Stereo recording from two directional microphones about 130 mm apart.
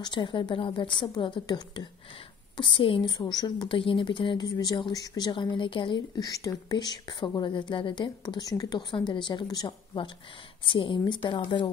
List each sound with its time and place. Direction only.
0.0 s a woman's voice: 35° left (ahead or behind)